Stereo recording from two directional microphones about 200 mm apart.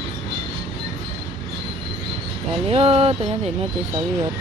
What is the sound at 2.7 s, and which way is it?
Speech, 30° right (ahead or behind).